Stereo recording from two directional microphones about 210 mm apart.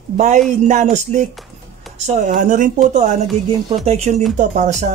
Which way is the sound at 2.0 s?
35° right (ahead or behind).